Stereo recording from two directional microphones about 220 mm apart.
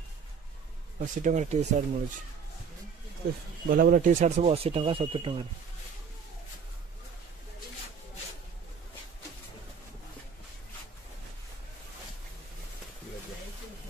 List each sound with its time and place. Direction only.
0.9 s speech: 35° right (ahead or behind)
3.6 s speech: 40° right (ahead or behind); by 5.4 s 25° right (ahead or behind)